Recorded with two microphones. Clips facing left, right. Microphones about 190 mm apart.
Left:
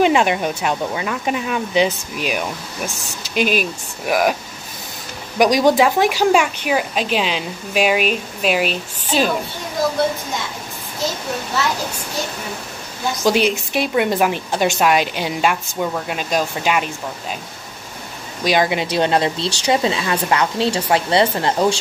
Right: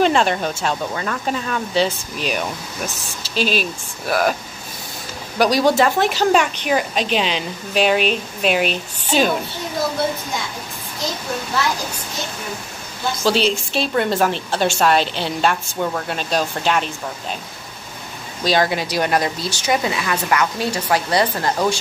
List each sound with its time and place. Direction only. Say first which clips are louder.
0.0 s a woman's voice: left 1 dB; 10° left (ahead or behind)
4.0 s a woman's voice: left 2 dB; 10° left (ahead or behind)
5.4 s a woman's voice: left 2 dB; 15° left (ahead or behind)
13.2 s a woman's voice: left 2 dB; 15° left (ahead or behind)
18.4 s speech: left 1 dB; 15° left (ahead or behind)